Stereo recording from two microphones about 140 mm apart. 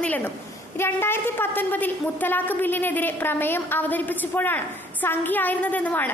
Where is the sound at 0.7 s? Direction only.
15° left (ahead or behind).